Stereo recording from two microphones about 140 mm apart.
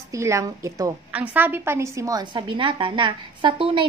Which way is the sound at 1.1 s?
10° right (ahead or behind).